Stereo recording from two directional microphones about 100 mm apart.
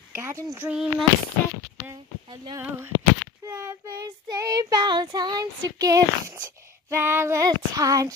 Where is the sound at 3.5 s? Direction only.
25° right (ahead or behind).